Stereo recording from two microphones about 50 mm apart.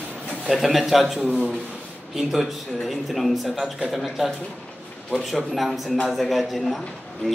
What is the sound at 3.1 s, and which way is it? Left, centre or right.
Speech, centre.